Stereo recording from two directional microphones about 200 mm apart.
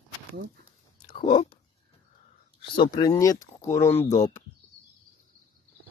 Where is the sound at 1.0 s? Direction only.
25° left (ahead or behind).